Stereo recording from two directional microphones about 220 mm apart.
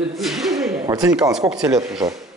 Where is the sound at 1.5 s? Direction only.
Centre (ahead or behind).